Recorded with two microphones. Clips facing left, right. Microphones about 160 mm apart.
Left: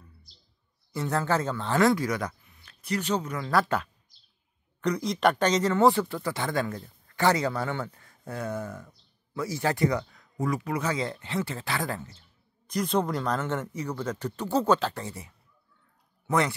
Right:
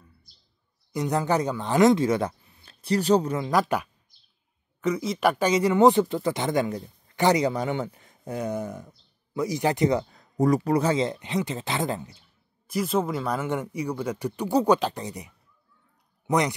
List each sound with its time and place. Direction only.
0.9 s speech: 15° right (ahead or behind); by 3.3 s 35° right (ahead or behind)
3.3 s speech: 15° right (ahead or behind)
4.8 s speech: centre (ahead or behind); by 12.2 s 20° right (ahead or behind)
12.6 s speech: 5° right (ahead or behind)